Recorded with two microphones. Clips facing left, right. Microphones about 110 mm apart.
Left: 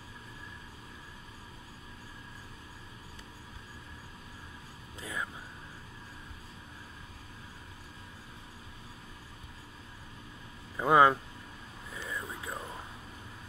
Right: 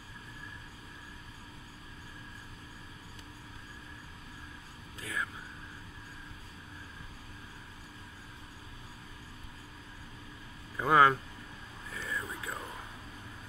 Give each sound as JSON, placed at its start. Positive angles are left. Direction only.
{"t": 5.0, "sound": "vehicle", "side_deg": 20}
{"t": 10.8, "sound": "speech", "side_deg": 20}
{"t": 11.9, "sound": "vehicle", "side_deg": 20}